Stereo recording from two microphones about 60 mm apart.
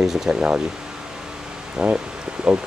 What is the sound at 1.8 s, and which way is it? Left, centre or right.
Speech, centre.